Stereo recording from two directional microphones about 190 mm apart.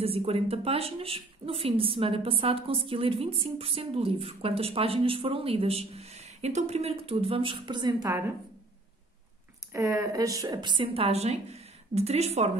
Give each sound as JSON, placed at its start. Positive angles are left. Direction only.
{"t": 0.0, "sound": "a woman's voice", "side_deg": -30}
{"t": 9.7, "sound": "a woman's voice", "side_deg": -15}